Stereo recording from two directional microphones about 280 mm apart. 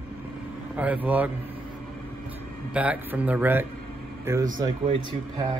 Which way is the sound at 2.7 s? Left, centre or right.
Centre.